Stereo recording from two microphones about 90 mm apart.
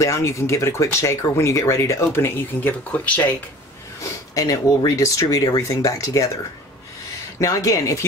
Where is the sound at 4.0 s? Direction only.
35° left (ahead or behind).